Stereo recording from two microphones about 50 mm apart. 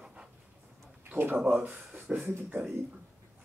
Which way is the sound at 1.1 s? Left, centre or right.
Right.